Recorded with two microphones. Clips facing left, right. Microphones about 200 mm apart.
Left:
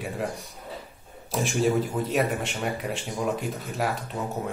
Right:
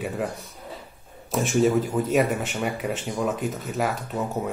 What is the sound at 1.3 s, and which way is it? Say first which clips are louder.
Speech: right 3 dB; centre (ahead or behind).